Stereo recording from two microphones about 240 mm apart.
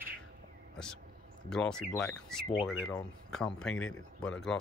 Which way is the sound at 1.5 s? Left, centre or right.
Centre.